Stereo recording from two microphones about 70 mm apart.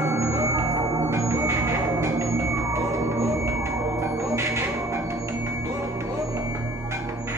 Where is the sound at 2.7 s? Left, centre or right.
Right.